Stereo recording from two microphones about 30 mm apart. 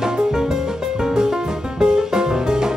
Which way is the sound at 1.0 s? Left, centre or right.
Right.